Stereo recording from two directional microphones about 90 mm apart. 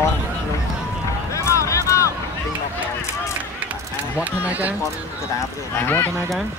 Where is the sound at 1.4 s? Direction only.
35° left (ahead or behind).